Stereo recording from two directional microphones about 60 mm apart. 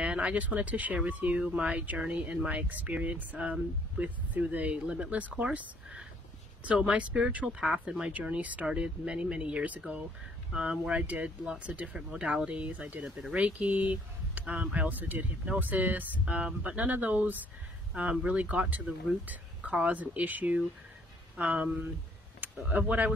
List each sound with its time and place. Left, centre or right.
0.0 s speech: centre
8.1 s speech: right
10.5 s speech: centre